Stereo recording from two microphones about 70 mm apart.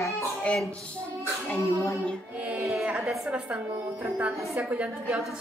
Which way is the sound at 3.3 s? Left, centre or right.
Centre.